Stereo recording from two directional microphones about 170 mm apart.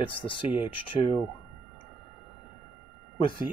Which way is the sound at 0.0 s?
30° left (ahead or behind).